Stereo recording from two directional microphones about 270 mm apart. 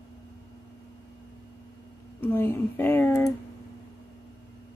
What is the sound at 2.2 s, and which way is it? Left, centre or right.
Speech, centre.